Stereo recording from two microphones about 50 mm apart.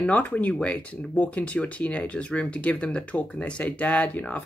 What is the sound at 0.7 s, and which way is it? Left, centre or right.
Speech, left.